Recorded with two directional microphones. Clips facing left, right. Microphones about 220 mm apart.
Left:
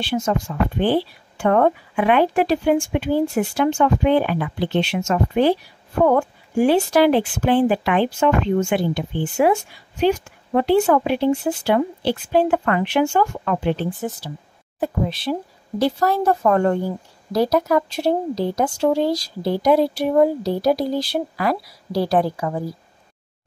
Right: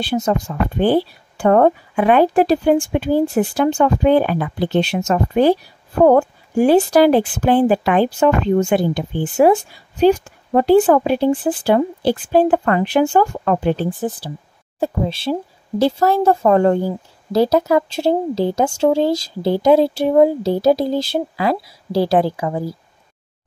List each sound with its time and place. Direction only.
0.0 s a woman's voice: 40° right (ahead or behind)